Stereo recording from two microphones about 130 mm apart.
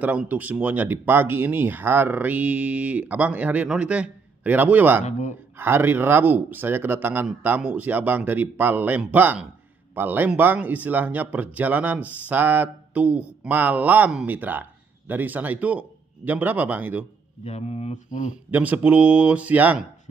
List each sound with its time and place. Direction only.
0.0 s speech: 10° right (ahead or behind)
17.5 s mantra: 55° left (ahead or behind); by 18.3 s 70° left (ahead or behind)
18.5 s speech: 10° right (ahead or behind)